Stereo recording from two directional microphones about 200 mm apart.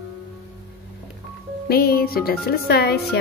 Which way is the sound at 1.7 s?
50° left (ahead or behind).